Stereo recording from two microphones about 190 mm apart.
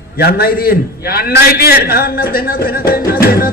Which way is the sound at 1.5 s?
55° left (ahead or behind).